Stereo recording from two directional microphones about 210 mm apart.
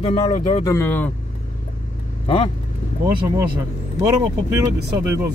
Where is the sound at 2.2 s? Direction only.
25° left (ahead or behind).